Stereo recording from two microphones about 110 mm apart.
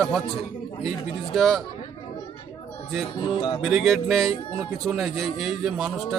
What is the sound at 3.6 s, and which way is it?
A man's voice, centre (ahead or behind).